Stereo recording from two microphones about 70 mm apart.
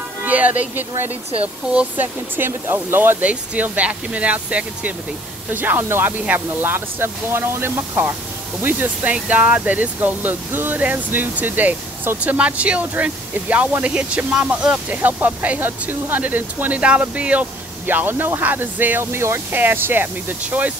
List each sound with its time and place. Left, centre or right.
0.2 s speech: right
2.0 s speech: right
19.1 s speech: right
19.5 s speech: right